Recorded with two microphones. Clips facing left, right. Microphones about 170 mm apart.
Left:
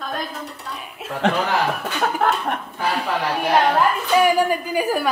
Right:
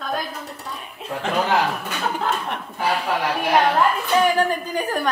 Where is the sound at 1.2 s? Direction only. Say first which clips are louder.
Left 5 dB; 70° left (ahead or behind).